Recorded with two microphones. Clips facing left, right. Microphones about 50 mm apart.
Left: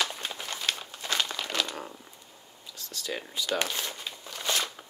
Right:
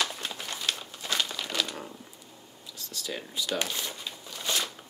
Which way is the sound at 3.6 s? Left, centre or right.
Left.